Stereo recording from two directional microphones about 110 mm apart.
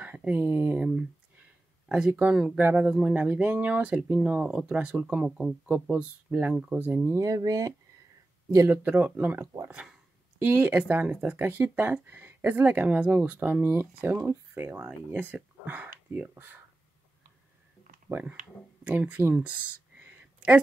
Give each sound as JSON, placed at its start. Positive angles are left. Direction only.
{"t": 0.0, "sound": "speech", "side_deg": -10}
{"t": 1.9, "sound": "speech", "side_deg": -10}
{"t": 8.8, "sound": "speech", "side_deg": -15}
{"t": 9.7, "sound": "speech", "side_deg": -10}
{"t": 18.9, "sound": "speech", "side_deg": -15}